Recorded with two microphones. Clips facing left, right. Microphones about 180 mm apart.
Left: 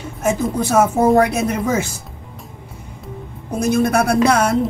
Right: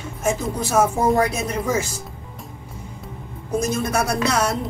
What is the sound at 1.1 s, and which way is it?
Speech, 60° left (ahead or behind).